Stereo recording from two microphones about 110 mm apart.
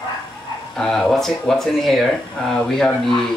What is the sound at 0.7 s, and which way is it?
Speech, 5° left (ahead or behind).